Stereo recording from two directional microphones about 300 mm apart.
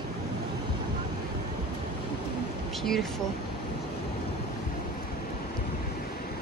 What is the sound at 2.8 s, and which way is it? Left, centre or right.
Speech, centre.